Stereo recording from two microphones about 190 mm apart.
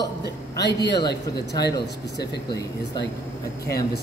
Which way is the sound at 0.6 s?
65° left (ahead or behind).